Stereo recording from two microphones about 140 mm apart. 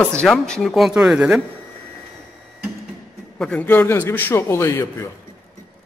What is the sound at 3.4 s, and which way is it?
A man's voice, 10° left (ahead or behind).